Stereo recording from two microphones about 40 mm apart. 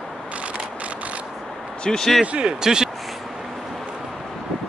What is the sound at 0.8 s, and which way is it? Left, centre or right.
Pulleys, right.